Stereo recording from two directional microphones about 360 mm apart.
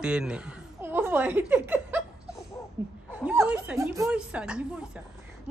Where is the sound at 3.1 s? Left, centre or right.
Centre.